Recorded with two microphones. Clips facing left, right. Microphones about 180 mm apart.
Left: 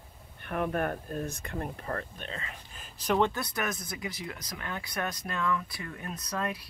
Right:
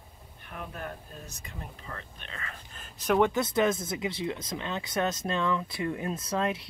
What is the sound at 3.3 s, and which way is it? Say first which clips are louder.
Speech: right 8 dB; 20° right (ahead or behind).